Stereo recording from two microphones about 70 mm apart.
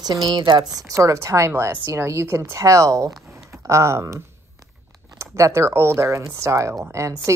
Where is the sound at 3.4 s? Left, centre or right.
Right.